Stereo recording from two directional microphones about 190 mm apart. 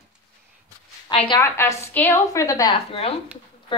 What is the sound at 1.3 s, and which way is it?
A woman's voice, 15° left (ahead or behind).